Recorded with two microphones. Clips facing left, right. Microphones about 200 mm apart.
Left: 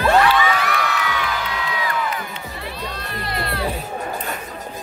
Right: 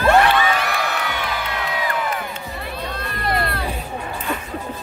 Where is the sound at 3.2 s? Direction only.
55° right (ahead or behind).